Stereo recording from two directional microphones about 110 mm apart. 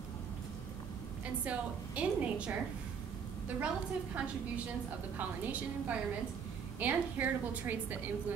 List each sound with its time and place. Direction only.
1.2 s a woman's voice: 10° right (ahead or behind)